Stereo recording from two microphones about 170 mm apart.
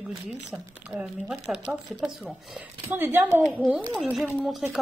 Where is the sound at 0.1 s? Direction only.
Centre (ahead or behind).